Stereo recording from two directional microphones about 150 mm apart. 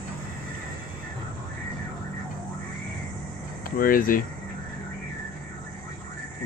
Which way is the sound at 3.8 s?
70° left (ahead or behind).